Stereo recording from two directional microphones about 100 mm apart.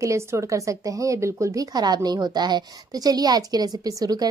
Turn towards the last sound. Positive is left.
turn(degrees=-40)  # may be behind; listen again after turning